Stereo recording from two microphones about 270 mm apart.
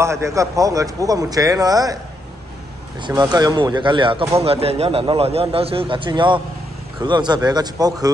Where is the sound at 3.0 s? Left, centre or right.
Centre.